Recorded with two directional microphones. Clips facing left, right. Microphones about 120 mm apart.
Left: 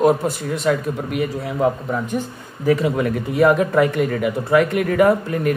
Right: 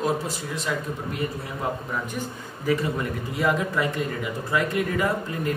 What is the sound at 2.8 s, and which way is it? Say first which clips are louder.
Speech: left 8 dB; 75° left (ahead or behind).